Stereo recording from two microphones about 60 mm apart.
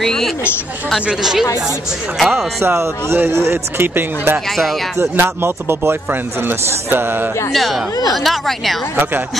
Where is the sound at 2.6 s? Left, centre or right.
Right.